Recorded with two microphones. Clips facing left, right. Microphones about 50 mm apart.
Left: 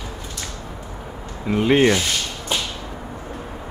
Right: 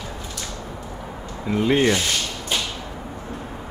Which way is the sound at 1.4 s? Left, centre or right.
Left.